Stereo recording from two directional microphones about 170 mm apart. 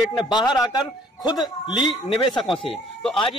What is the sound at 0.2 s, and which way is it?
A man's voice, 25° left (ahead or behind).